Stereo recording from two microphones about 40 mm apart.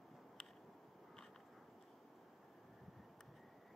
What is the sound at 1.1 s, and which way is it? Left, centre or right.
Biting, centre.